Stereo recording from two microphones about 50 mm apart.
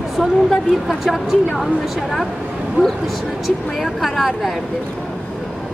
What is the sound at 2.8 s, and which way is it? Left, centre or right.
Speech, right.